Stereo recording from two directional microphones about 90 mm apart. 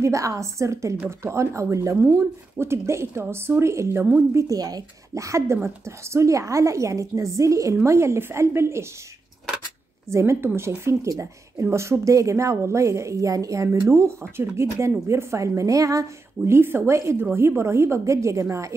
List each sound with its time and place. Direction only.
0.0 s a woman's voice: 35° right (ahead or behind)
10.0 s a woman's voice: 30° right (ahead or behind)